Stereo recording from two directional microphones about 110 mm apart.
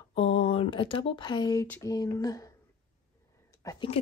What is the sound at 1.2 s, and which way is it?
A woman's voice, 40° left (ahead or behind).